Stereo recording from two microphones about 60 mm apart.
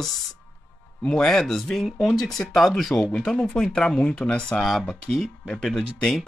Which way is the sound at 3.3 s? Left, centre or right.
Centre.